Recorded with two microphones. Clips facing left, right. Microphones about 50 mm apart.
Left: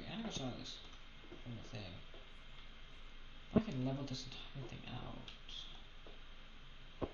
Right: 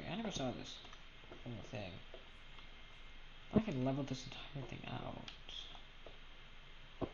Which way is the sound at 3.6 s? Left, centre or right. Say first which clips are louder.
Right 2 dB; right.